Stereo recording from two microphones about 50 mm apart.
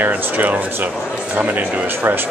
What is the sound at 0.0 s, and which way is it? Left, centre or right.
Speech, right.